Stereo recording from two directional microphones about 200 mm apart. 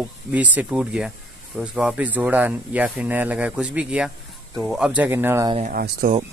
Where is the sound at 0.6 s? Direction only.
5° right (ahead or behind).